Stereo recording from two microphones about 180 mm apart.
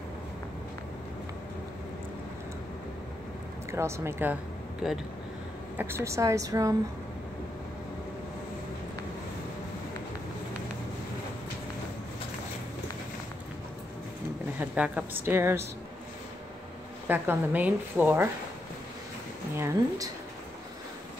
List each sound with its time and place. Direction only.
3.7 s a woman's voice: 15° right (ahead or behind)
5.8 s a woman's voice: 15° right (ahead or behind)
14.6 s a woman's voice: 10° right (ahead or behind)
17.1 s a woman's voice: 10° right (ahead or behind)
19.5 s a woman's voice: 15° right (ahead or behind)